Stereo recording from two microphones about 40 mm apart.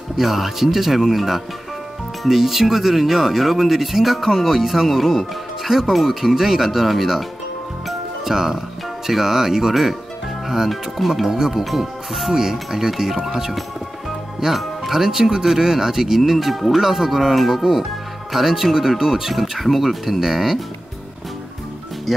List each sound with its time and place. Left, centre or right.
0.2 s speech: centre